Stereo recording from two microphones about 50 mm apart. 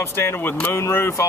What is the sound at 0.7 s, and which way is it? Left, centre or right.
Speech, left.